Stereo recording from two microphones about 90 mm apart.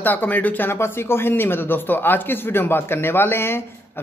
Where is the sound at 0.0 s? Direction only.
20° left (ahead or behind).